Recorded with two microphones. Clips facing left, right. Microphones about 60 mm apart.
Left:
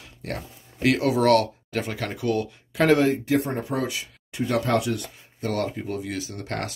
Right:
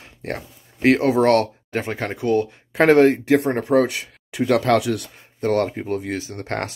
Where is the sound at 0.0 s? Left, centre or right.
Right.